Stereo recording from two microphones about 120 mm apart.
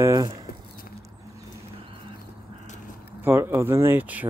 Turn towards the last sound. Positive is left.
turn(degrees=-15)  # may be behind; listen again after turning